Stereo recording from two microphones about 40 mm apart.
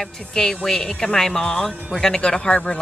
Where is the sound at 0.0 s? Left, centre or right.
Centre.